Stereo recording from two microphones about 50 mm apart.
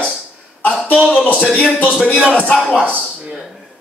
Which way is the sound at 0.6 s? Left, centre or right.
Left.